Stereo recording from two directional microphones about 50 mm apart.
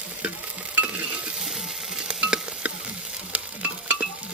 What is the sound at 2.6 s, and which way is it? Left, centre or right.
Frying, right.